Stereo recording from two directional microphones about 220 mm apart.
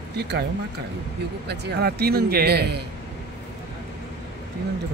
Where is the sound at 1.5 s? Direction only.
45° right (ahead or behind).